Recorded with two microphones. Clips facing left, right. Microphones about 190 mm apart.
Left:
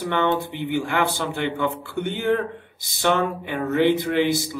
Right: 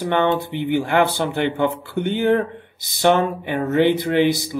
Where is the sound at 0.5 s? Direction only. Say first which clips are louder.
Right 5 dB; 20° right (ahead or behind).